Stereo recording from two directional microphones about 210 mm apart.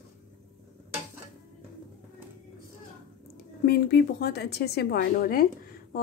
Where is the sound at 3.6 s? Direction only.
50° left (ahead or behind).